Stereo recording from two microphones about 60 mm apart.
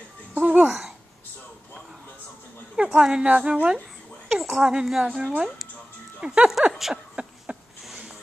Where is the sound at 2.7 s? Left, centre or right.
Centre.